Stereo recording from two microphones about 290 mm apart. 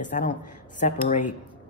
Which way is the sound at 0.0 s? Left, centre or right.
Left.